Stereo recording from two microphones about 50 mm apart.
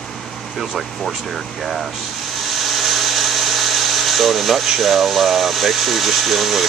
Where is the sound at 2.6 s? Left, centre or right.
Centre.